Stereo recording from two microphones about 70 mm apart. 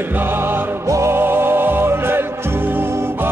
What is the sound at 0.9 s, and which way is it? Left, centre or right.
Music, right.